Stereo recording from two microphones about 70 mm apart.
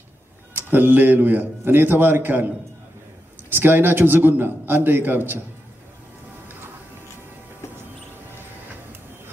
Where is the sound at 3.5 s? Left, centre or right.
Right.